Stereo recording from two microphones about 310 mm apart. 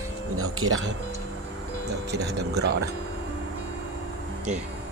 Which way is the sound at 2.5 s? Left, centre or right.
Right.